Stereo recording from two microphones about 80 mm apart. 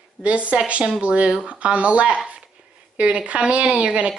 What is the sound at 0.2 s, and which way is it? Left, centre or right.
A woman's voice, centre.